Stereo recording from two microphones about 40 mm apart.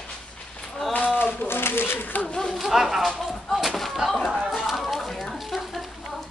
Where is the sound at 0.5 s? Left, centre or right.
Centre.